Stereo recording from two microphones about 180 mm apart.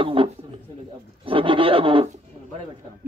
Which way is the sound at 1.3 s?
30° right (ahead or behind).